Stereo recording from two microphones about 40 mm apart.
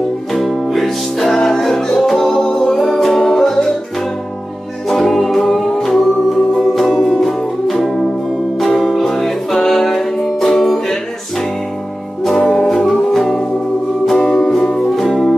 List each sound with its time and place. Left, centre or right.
0.3 s music: centre
4.8 s music: centre
12.2 s music: centre
14.4 s music: centre
15.0 s music: centre